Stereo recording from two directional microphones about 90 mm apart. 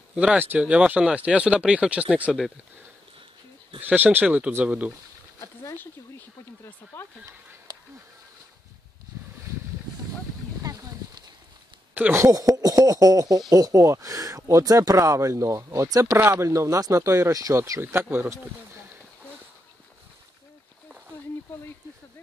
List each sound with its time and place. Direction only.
0.1 s speech: 10° right (ahead or behind)
3.8 s speech: 20° right (ahead or behind)
5.4 s a sound: 30° left (ahead or behind)
6.9 s speech: 20° left (ahead or behind)
7.7 s duck: 50° right (ahead or behind)
11.9 s a sound: 20° right (ahead or behind)
12.2 s speech: 40° right (ahead or behind)